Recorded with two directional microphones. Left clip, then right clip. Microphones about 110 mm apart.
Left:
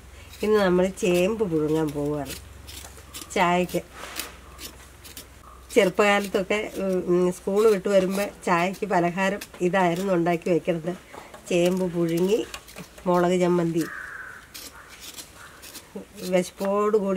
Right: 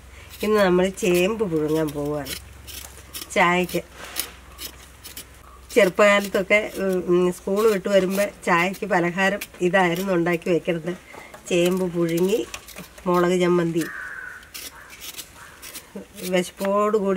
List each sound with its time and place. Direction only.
0.6 s speech: 5° left (ahead or behind)
3.3 s speech: 10° left (ahead or behind)
5.9 s speech: 10° left (ahead or behind)
16.3 s speech: 10° left (ahead or behind)